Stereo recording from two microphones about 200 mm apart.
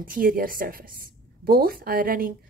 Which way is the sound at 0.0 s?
45° right (ahead or behind).